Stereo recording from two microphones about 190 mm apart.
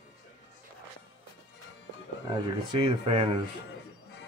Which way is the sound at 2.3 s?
25° right (ahead or behind).